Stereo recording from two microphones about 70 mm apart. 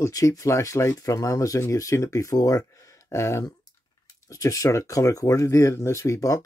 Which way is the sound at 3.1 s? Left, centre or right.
Left.